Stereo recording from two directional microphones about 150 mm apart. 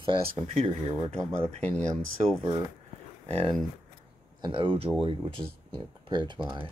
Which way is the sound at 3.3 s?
40° right (ahead or behind).